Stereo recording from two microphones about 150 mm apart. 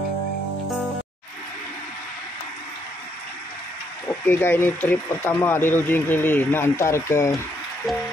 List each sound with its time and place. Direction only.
4.3 s speech: 15° left (ahead or behind)